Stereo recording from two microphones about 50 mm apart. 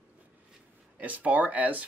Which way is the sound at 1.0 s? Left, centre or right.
Right.